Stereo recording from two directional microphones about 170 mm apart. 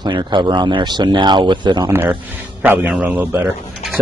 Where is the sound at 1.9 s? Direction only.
10° right (ahead or behind).